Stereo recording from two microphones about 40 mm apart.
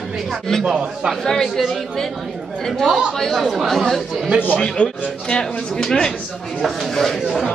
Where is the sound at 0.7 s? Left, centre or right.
Centre.